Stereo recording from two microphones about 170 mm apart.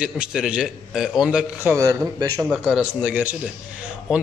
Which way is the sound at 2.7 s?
5° right (ahead or behind).